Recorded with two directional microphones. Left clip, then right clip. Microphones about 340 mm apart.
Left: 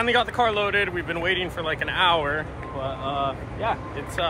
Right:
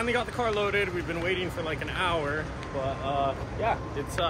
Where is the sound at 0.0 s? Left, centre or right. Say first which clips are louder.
Left 7 dB; centre.